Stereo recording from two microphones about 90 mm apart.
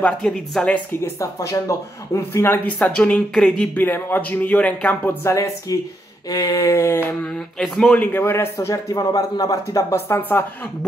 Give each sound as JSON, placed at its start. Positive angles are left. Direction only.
{"t": 0.0, "sound": "speech", "side_deg": 10}
{"t": 1.0, "sound": "speech", "side_deg": 30}
{"t": 2.8, "sound": "speech", "side_deg": 10}
{"t": 3.7, "sound": "a man's voice", "side_deg": 20}
{"t": 5.2, "sound": "speech", "side_deg": 35}
{"t": 7.5, "sound": "speech", "side_deg": 5}
{"t": 8.0, "sound": "a man's voice", "side_deg": 20}